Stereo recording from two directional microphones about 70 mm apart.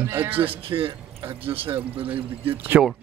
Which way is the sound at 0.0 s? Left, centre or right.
Right.